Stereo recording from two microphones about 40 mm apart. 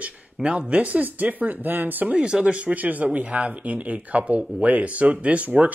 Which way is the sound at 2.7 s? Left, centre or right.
Right.